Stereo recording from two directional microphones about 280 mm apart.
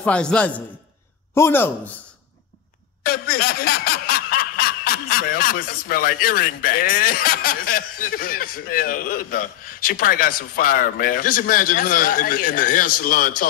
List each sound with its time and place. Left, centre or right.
0.0 s a man's voice: centre
3.1 s snicker: left